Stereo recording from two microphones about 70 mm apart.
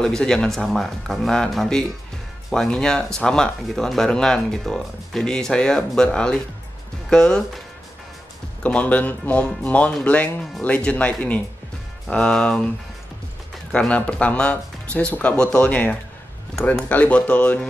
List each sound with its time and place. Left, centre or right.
0.0 s speech: centre
8.6 s speech: centre
12.1 s speech: centre
13.7 s speech: centre